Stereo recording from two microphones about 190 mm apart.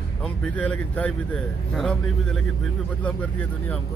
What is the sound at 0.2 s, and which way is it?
A man's voice, 5° left (ahead or behind).